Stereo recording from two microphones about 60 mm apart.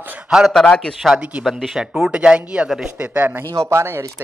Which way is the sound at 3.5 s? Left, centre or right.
Right.